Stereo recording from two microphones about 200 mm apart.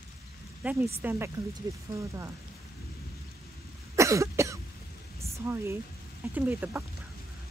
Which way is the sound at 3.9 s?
15° right (ahead or behind).